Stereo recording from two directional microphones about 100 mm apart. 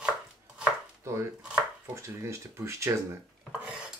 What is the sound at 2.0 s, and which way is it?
Speech, 30° right (ahead or behind).